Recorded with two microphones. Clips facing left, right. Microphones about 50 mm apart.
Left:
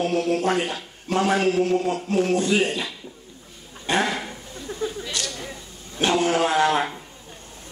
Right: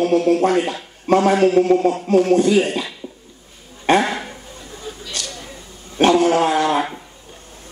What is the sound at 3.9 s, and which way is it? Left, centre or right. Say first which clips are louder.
Dog: right 7 dB; right.